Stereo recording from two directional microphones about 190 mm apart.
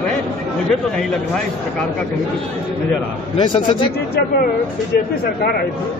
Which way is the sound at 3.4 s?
25° left (ahead or behind).